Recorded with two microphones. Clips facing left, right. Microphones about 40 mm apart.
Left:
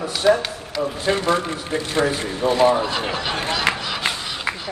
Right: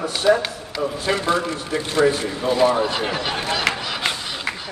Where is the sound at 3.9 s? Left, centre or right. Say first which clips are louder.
Even; centre.